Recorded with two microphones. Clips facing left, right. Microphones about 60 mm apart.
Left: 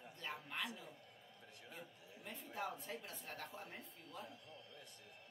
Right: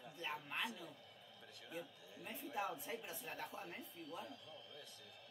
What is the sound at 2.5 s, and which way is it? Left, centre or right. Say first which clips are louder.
A man's voice: right 2 dB; centre.